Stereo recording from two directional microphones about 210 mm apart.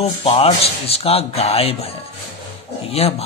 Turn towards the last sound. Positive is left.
turn(degrees=30)  # may be behind; listen again after turning